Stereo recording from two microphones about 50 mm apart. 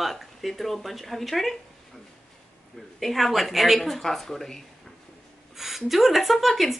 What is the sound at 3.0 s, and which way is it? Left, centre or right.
Speech, centre.